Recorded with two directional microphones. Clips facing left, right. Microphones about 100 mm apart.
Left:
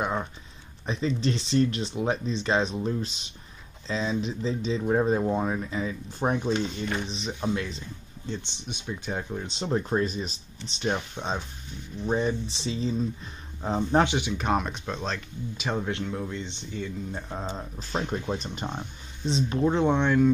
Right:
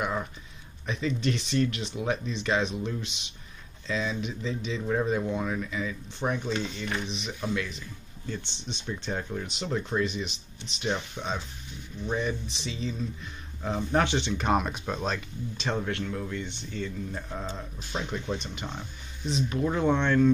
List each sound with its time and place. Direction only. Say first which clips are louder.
0.0 s music: left 2 dB; 25° left (ahead or behind)
0.8 s speech: left 2 dB; 30° left (ahead or behind)
6.4 s speech: left 4 dB; 15° left (ahead or behind)
6.9 s speech: left 2 dB; 35° left (ahead or behind)
8.3 s speech: left 1 dB; 15° left (ahead or behind)
9.5 s speech: left 6 dB; 30° left (ahead or behind)
14.0 s speech: even; 10° left (ahead or behind); by 15.2 s 5° right (ahead or behind)
15.5 s speech: left 1 dB; 10° left (ahead or behind)
17.3 s speech: left 2 dB; 30° left (ahead or behind)